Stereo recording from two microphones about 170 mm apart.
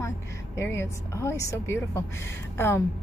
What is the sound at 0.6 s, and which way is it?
A woman's voice, 15° left (ahead or behind).